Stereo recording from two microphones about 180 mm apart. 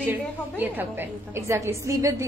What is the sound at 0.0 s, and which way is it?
A woman's voice, 10° right (ahead or behind).